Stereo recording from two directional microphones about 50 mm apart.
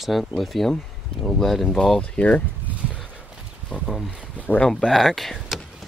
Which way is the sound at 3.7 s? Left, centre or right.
Centre.